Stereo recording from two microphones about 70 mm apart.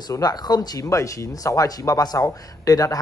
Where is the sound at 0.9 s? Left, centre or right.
Left.